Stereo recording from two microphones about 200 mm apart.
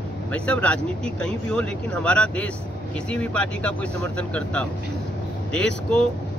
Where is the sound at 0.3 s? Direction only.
5° left (ahead or behind).